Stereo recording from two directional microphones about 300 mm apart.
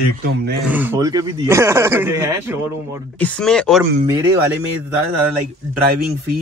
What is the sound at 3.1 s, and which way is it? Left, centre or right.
Speech, centre.